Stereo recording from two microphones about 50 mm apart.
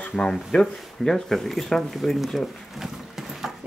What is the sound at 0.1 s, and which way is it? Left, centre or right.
Speech, centre.